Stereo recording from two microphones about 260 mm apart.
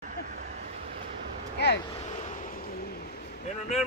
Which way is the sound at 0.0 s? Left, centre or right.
Right.